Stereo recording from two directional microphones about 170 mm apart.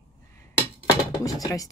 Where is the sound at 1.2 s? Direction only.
20° left (ahead or behind).